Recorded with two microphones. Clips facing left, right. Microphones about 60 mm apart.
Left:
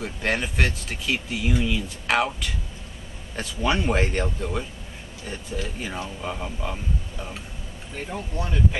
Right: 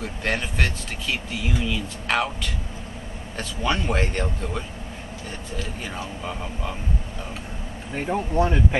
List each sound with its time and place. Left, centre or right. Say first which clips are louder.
0.0 s speech: left 1 dB; centre
7.9 s speech: right 8 dB; right